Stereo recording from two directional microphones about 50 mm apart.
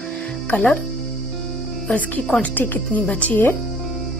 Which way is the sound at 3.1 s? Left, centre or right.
Left.